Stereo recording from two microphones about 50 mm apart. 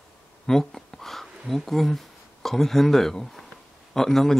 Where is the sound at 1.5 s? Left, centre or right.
Centre.